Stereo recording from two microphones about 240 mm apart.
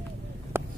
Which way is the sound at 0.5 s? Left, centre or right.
Centre.